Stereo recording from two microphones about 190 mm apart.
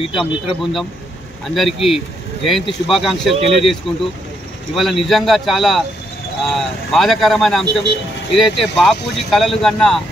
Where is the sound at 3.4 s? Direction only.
30° right (ahead or behind).